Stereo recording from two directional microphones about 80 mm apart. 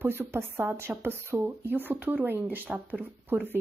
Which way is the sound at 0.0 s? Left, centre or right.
Right.